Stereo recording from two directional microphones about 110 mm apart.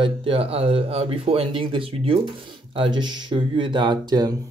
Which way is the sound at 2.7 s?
45° right (ahead or behind).